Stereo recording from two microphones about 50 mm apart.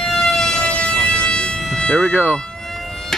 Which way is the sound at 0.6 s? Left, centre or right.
Left.